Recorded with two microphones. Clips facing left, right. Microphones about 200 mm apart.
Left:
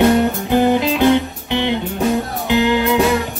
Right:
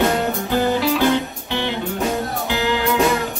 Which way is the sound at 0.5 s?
20° left (ahead or behind).